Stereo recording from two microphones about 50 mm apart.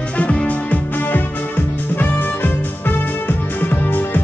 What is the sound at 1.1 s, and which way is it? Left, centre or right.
Music, left.